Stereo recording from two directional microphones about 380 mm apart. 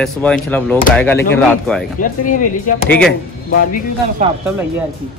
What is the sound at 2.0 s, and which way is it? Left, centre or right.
Speech, left.